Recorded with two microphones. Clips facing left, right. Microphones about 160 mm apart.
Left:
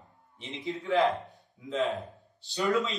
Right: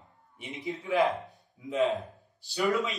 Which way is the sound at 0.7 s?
10° right (ahead or behind).